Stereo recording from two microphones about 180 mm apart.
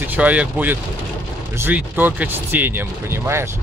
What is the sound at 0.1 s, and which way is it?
Speech, 10° right (ahead or behind).